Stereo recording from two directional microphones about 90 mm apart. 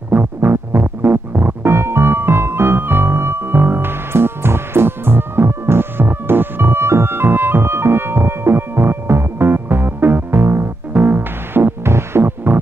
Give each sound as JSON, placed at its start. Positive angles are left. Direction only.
{"t": 0.1, "sound": "music", "side_deg": -25}